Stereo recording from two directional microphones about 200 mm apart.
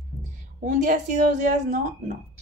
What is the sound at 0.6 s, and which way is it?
A woman's voice, 40° right (ahead or behind).